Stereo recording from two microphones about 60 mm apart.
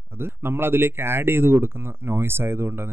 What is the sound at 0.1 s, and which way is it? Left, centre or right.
Speech, right.